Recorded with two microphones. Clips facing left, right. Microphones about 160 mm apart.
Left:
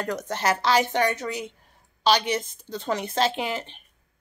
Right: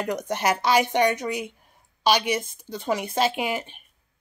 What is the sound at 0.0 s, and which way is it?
A woman's voice, 15° right (ahead or behind).